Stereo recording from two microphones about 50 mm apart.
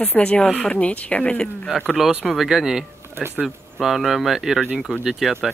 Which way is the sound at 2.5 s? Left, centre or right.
Centre.